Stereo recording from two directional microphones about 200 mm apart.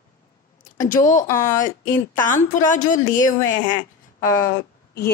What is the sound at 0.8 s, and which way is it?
Speech, 40° left (ahead or behind).